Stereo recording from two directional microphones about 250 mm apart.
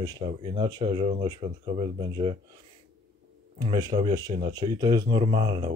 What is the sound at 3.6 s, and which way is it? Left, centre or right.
Speech, centre.